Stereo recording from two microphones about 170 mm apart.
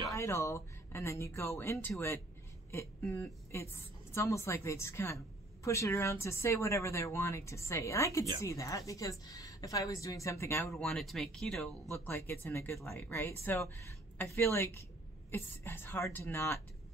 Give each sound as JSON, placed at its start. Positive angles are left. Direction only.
{"t": 0.1, "sound": "a woman's voice", "side_deg": 15}
{"t": 10.7, "sound": "speech", "side_deg": 0}
{"t": 11.9, "sound": "a woman's voice", "side_deg": 15}